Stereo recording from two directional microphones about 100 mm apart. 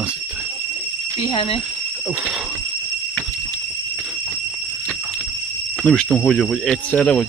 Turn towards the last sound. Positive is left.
turn(degrees=10)  # may be behind; listen again after turning